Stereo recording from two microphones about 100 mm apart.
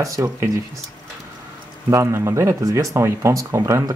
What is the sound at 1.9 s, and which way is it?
Speech, 30° right (ahead or behind).